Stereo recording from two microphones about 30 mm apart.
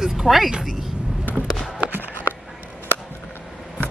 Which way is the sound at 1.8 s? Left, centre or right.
Right.